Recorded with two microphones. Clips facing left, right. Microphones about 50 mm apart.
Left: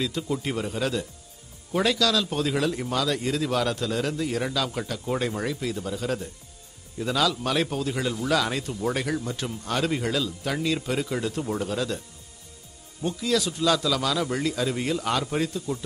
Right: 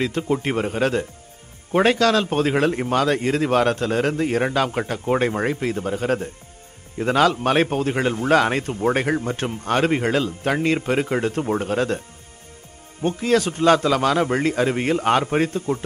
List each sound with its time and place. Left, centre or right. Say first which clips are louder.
0.0 s a man's voice: right 6 dB; right
13.0 s a man's voice: right 6 dB; right